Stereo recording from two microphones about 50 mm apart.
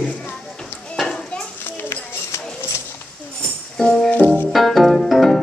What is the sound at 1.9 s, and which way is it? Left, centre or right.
Music, left.